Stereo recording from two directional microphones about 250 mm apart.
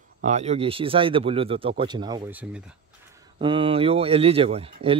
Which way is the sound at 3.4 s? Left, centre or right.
Centre.